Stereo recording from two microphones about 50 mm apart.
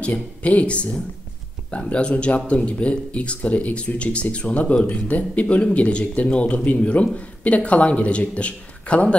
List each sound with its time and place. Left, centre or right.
0.0 s speech: left